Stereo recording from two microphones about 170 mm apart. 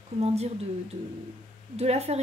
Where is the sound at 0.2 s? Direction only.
40° right (ahead or behind).